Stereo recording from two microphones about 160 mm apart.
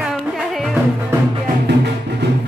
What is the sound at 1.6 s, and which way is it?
Music, 90° right.